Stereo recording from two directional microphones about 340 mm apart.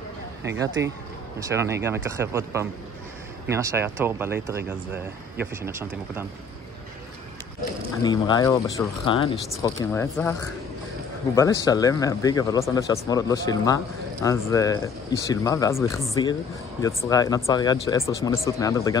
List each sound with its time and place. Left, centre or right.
1.5 s speech: centre
8.0 s speech: centre
11.3 s speech: centre